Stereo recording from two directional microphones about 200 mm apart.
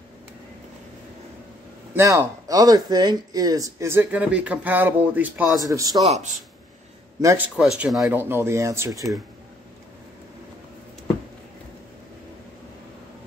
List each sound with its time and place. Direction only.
2.0 s speech: 15° right (ahead or behind)
7.2 s speech: 10° right (ahead or behind)